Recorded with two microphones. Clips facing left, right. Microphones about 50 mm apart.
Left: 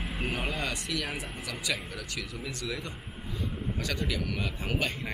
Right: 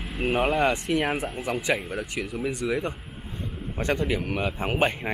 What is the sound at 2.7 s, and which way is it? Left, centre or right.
Speech, right.